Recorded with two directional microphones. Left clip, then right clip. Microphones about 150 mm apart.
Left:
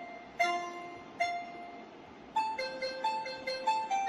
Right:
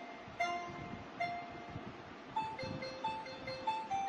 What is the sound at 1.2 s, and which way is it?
Train, 45° left (ahead or behind).